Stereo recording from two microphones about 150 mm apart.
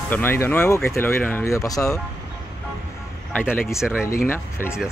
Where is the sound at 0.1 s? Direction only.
15° left (ahead or behind).